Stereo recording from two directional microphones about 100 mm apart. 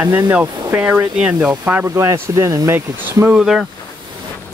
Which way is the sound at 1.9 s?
30° right (ahead or behind).